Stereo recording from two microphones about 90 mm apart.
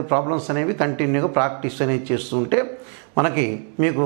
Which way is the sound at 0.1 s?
20° right (ahead or behind).